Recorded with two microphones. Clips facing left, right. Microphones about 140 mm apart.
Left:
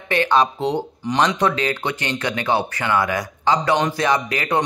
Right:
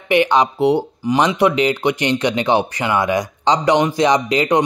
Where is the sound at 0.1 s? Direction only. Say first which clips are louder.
Right 3 dB; 15° right (ahead or behind).